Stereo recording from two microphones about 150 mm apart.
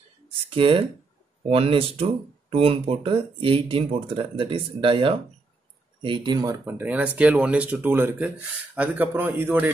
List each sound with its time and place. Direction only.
0.5 s speech: 35° right (ahead or behind)
6.6 s speech: 10° right (ahead or behind)